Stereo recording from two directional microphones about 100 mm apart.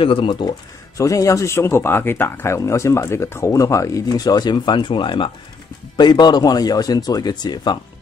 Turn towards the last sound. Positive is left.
turn(degrees=45)  # may be behind; listen again after turning